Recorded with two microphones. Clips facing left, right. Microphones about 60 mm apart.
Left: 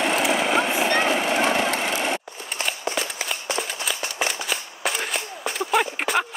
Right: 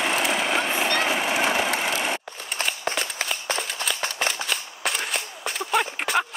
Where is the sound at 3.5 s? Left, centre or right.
Centre.